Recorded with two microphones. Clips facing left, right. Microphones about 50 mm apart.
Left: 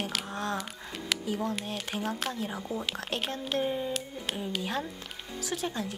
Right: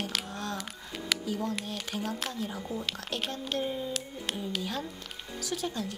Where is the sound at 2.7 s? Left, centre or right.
Centre.